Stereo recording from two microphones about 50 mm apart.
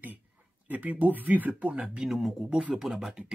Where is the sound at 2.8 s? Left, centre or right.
Centre.